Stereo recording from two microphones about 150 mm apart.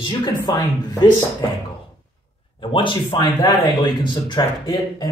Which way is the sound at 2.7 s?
35° left (ahead or behind).